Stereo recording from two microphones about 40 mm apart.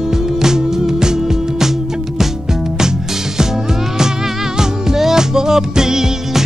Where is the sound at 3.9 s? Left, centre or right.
Centre.